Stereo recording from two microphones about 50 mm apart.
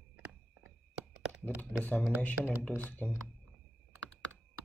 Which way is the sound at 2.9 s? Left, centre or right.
Left.